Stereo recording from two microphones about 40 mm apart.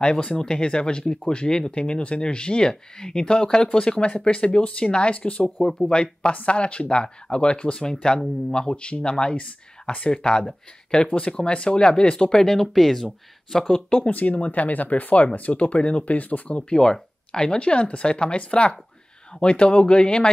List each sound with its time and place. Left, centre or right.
0.0 s speech: left
5.6 s speech: centre
5.9 s speech: left
13.7 s speech: left
14.1 s speech: left
16.7 s speech: centre